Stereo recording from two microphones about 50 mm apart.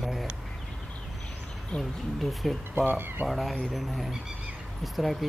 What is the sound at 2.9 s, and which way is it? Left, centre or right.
Speech, right.